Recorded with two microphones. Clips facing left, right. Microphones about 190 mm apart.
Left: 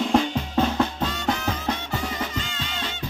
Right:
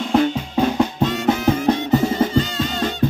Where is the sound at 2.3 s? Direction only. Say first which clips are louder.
Right 12 dB; 40° right (ahead or behind).